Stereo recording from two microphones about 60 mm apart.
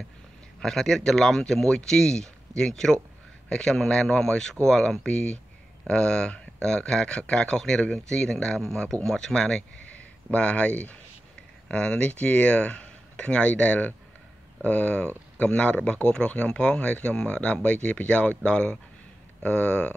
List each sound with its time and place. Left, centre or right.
0.6 s speech: centre
9.8 s speech: left